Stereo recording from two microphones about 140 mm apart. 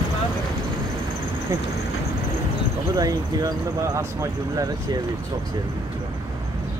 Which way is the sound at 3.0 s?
25° right (ahead or behind).